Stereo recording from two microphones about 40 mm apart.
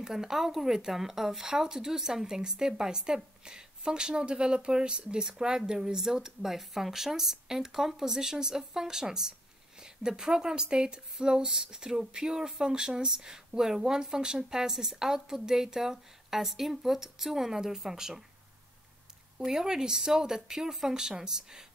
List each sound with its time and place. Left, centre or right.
0.0 s speech: centre
19.3 s speech: centre